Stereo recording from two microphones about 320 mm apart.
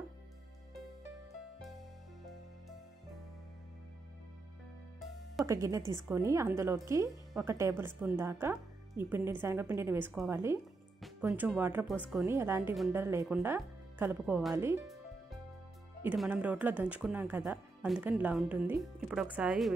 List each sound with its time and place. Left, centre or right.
5.4 s speech: centre
16.0 s speech: centre